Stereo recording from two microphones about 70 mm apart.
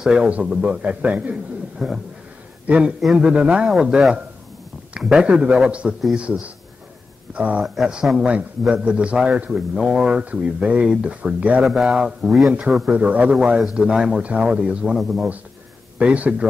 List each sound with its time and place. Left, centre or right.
0.0 s a man's voice: centre
1.8 s a man's voice: centre
2.6 s a man's voice: right
5.0 s a man's voice: centre
7.6 s a man's voice: centre; by 11.6 s right
11.6 s a man's voice: centre
12.9 s a man's voice: centre
15.0 s speech: centre
16.0 s speech: centre